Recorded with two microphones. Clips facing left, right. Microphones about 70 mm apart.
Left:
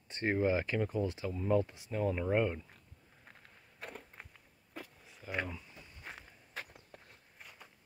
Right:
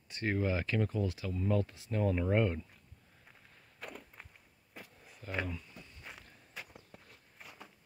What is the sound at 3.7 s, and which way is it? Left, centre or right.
Walk, left.